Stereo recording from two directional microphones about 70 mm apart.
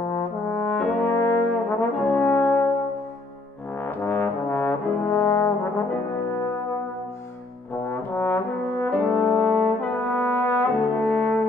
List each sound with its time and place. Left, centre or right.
0.6 s french horn: centre
1.0 s brass instrument: left
3.8 s brass instrument: left
7.7 s brass instrument: left